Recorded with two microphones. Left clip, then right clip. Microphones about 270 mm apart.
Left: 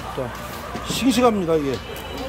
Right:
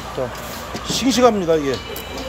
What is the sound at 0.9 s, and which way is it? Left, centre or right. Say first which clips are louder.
Speech: right 3 dB; centre.